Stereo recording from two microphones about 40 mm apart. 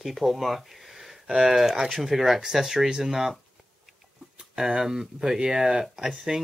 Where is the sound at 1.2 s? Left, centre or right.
Centre.